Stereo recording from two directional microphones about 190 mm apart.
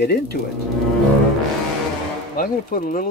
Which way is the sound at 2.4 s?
50° left (ahead or behind).